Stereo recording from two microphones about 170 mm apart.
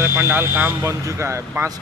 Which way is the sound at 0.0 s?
15° right (ahead or behind).